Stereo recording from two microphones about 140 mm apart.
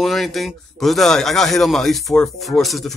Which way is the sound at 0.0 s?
Centre (ahead or behind).